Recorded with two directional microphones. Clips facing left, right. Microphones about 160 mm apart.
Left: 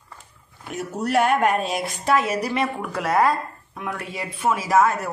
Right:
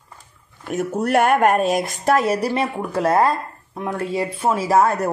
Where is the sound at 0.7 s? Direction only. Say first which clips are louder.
Right 5 dB; 50° right (ahead or behind); by 5.1 s 35° right (ahead or behind).